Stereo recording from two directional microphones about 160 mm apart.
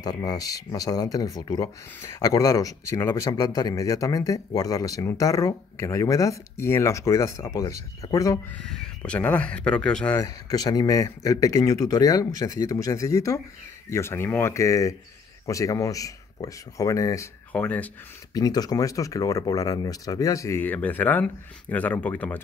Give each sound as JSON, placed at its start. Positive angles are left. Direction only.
{"t": 0.0, "sound": "speech", "side_deg": 25}
{"t": 8.5, "sound": "speech", "side_deg": 5}
{"t": 10.2, "sound": "speech", "side_deg": 25}
{"t": 18.3, "sound": "speech", "side_deg": 25}